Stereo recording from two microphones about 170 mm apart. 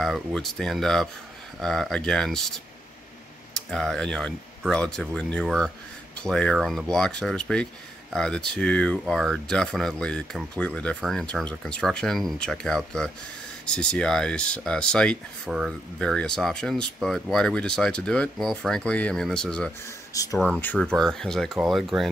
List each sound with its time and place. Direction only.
0.0 s speech: centre (ahead or behind)
20.1 s a sound: 20° left (ahead or behind)
20.3 s speech: 5° left (ahead or behind)